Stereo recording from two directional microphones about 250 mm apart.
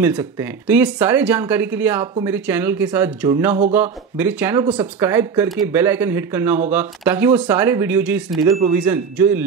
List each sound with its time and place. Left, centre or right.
0.0 s speech: centre
8.4 s speech: right
8.9 s speech: centre